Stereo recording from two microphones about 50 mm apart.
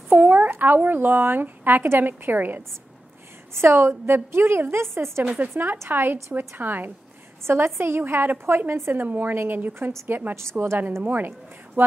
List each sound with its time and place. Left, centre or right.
0.1 s a sound: right
0.6 s a woman's voice: right
3.6 s a woman's voice: right
5.5 s a woman's voice: right
7.4 s a woman's voice: right
8.9 s a woman's voice: right
10.5 s a woman's voice: right
11.0 s a woman's voice: right